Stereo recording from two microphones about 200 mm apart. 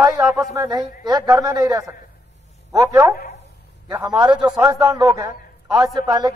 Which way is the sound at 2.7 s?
15° right (ahead or behind).